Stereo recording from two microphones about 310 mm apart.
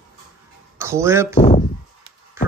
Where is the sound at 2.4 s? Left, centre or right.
Centre.